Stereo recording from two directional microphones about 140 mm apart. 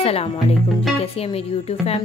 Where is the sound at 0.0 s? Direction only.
45° left (ahead or behind).